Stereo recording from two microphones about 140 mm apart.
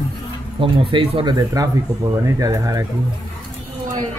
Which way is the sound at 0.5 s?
40° right (ahead or behind).